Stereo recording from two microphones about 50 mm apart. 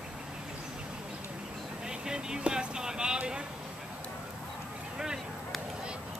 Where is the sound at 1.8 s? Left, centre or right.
Centre.